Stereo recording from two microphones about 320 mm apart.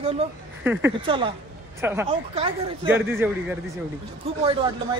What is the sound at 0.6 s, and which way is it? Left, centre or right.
Speech, centre.